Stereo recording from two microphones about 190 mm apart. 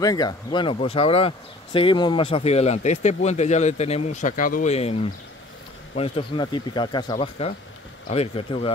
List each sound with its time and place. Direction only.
0.0 s speech: 20° left (ahead or behind)
5.9 s speech: 30° left (ahead or behind)